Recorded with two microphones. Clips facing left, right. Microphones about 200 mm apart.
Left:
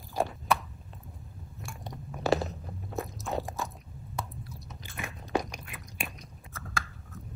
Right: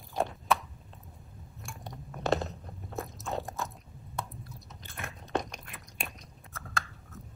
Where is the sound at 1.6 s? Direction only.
Centre (ahead or behind).